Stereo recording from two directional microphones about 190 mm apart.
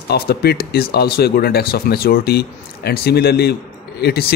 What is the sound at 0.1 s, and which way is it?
Speech, 55° left (ahead or behind).